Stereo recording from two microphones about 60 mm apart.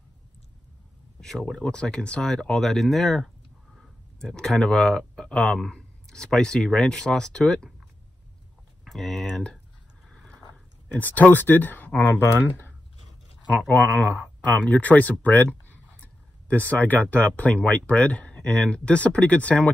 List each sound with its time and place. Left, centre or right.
1.2 s speech: centre
8.8 s speech: centre
9.2 s speech: centre
10.9 s speech: left
13.9 s speech: left